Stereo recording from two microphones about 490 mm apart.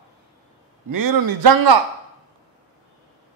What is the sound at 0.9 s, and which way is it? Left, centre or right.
Speech, right.